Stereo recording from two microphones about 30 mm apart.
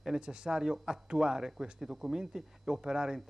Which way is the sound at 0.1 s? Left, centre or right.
Right.